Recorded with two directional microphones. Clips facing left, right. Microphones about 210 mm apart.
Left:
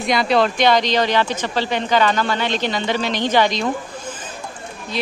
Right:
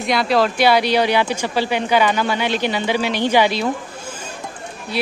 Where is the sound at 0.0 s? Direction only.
Centre (ahead or behind).